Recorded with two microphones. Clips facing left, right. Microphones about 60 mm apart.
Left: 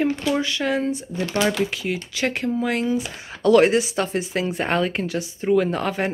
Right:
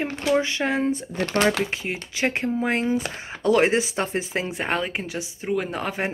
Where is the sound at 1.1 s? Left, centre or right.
Right.